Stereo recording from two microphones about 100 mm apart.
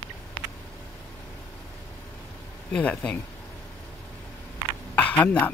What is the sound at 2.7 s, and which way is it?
Speech, 15° left (ahead or behind).